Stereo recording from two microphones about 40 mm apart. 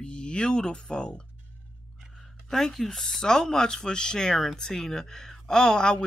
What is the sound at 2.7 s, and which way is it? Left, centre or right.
Speech, centre.